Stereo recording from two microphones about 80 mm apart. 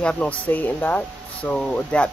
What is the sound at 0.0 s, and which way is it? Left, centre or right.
Speech, centre.